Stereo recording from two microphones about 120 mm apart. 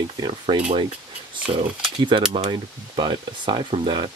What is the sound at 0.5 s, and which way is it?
Speech, 45° right (ahead or behind).